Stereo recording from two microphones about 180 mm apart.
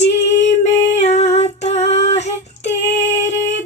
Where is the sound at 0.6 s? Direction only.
35° left (ahead or behind).